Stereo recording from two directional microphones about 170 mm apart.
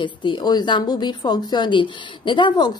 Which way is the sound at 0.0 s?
30° left (ahead or behind).